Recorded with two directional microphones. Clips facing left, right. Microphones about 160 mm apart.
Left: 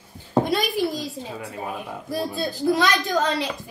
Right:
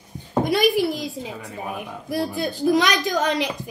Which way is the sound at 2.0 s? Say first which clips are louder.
Right 2 dB; 15° right (ahead or behind).